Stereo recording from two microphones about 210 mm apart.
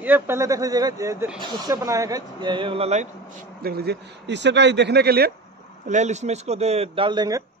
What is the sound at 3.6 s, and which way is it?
Speech, 50° right (ahead or behind).